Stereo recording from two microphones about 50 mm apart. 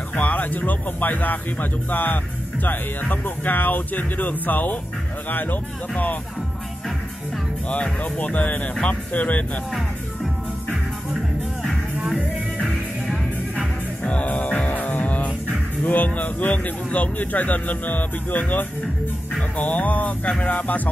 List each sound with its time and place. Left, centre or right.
0.1 s speech: left
7.8 s speech: left
14.0 s music: left
15.8 s speech: left